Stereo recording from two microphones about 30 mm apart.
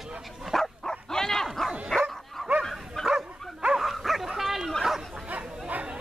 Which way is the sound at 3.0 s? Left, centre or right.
Left.